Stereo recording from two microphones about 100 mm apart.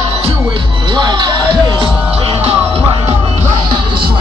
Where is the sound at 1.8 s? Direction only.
65° right (ahead or behind).